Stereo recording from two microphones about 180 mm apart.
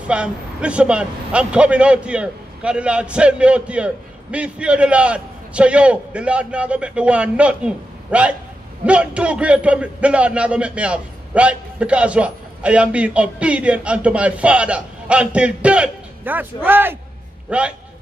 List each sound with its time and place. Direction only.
0.0 s a man's voice: 5° right (ahead or behind)